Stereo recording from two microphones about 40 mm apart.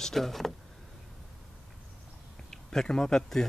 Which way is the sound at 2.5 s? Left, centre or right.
Centre.